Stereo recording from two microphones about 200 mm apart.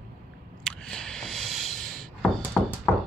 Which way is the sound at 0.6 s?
5° left (ahead or behind).